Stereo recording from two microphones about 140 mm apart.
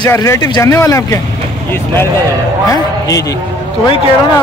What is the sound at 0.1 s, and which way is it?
Speech, 20° left (ahead or behind).